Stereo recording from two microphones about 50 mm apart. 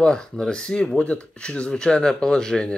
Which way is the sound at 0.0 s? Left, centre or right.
Centre.